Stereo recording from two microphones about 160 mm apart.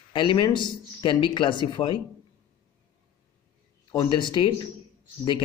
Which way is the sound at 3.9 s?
30° left (ahead or behind).